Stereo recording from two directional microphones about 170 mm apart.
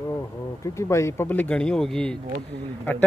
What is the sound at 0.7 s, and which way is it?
Speech, 15° left (ahead or behind).